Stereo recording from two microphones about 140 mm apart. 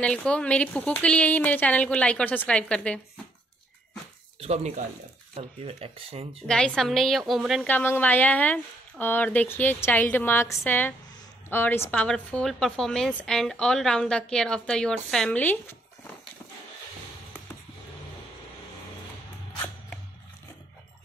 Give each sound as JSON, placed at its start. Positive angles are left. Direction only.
{"t": 0.0, "sound": "a woman's voice", "side_deg": 10}
{"t": 4.4, "sound": "speech", "side_deg": -50}
{"t": 6.4, "sound": "a woman's voice", "side_deg": 5}
{"t": 7.6, "sound": "a woman's voice", "side_deg": 15}